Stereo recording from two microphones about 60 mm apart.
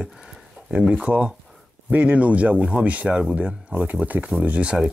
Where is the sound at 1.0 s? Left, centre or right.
Right.